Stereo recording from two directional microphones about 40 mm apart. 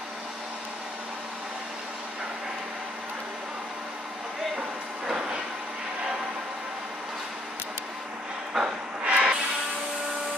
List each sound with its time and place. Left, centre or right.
8.5 s train: centre
9.0 s printer: right